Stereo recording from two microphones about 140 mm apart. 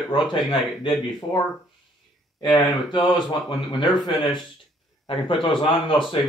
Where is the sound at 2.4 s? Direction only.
35° left (ahead or behind).